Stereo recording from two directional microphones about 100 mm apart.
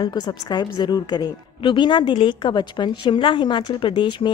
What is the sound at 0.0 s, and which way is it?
A woman's voice, 45° left (ahead or behind).